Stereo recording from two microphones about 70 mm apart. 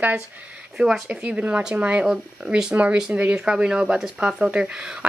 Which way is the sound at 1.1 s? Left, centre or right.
Centre.